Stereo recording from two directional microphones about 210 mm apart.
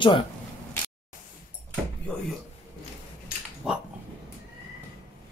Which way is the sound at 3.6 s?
5° right (ahead or behind).